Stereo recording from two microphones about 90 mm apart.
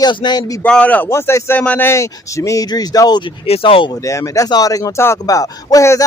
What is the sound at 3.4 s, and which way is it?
Speech, 85° left.